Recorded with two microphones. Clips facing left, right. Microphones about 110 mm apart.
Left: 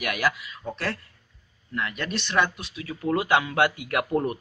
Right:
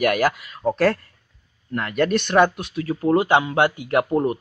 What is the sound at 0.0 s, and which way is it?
Speech, 45° right (ahead or behind).